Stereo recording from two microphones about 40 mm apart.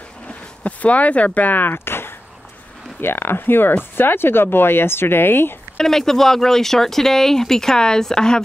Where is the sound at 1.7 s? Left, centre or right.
Left.